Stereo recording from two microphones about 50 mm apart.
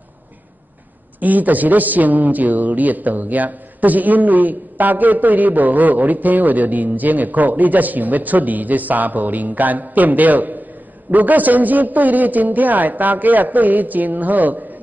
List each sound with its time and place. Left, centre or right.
1.2 s a man's voice: right